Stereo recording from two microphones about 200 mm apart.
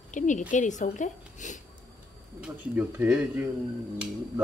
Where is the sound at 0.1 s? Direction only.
40° left (ahead or behind).